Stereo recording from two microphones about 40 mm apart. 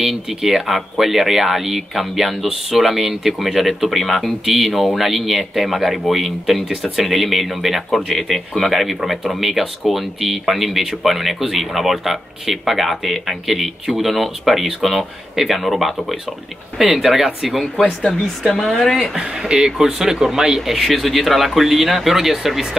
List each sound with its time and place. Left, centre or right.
0.3 s speech: centre
19.1 s speech: centre